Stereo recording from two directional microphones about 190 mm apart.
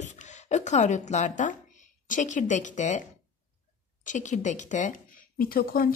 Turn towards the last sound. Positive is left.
turn(degrees=50)  # may be behind; listen again after turning